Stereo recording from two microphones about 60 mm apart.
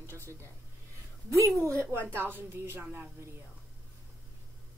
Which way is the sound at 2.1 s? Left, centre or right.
Right.